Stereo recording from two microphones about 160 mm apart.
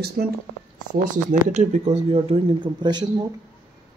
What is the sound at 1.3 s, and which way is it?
Speech, 50° right (ahead or behind).